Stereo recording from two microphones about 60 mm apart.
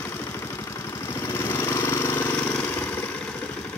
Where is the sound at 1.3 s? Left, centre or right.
Left.